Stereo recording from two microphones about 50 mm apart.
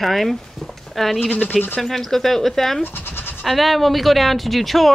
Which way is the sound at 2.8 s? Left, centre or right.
Left.